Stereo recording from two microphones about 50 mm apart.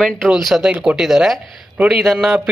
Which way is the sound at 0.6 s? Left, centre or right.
Right.